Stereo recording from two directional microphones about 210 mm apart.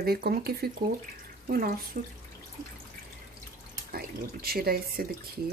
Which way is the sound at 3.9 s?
45° right (ahead or behind).